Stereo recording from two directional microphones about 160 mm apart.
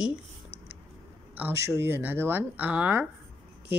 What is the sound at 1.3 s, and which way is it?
Speech, 15° right (ahead or behind).